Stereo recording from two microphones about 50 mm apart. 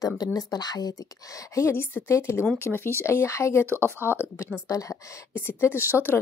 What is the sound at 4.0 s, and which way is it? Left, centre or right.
Speech, right.